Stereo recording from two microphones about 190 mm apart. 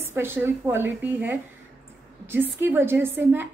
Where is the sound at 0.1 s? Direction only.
10° right (ahead or behind).